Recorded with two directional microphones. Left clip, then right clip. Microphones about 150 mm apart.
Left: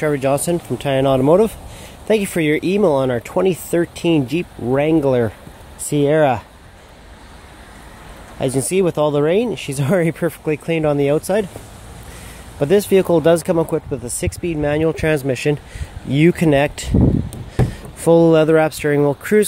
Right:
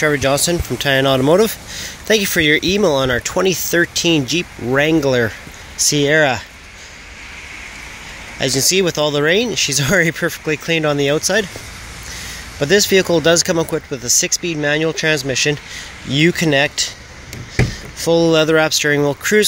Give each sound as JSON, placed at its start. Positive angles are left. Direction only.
{"t": 0.0, "sound": "speech", "side_deg": 10}
{"t": 8.4, "sound": "speech", "side_deg": 25}
{"t": 12.5, "sound": "speech", "side_deg": 20}